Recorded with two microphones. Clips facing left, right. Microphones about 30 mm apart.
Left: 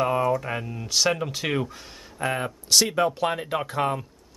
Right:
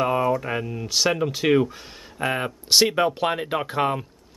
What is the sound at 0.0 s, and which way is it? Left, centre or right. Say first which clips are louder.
Speech: right 1 dB; centre.